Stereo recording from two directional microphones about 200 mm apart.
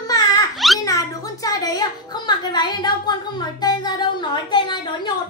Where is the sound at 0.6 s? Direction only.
Centre (ahead or behind).